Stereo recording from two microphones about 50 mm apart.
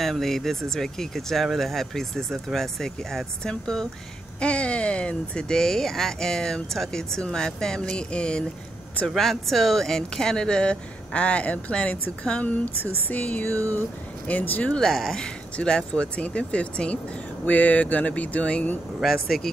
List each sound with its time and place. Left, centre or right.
0.0 s speech: centre
4.4 s speech: left
9.0 s speech: centre; by 14.7 s left
14.7 s speech: centre
17.5 s speech: left
19.2 s speech: centre